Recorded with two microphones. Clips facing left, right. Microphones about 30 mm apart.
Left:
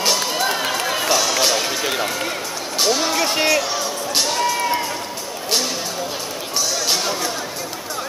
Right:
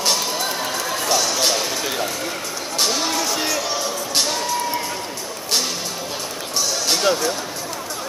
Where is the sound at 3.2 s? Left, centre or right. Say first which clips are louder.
Left 4 dB; left.